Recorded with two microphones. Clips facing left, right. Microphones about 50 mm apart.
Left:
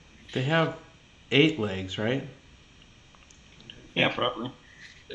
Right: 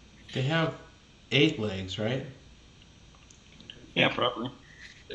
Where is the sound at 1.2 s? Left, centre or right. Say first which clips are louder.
Left 3 dB; left.